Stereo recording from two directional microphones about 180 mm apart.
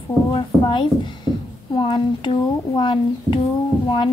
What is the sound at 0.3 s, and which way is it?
Speech, 25° left (ahead or behind).